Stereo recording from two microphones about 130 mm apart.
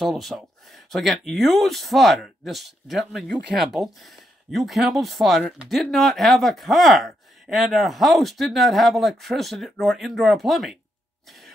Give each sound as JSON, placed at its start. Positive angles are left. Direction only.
{"t": 0.0, "sound": "speech", "side_deg": 0}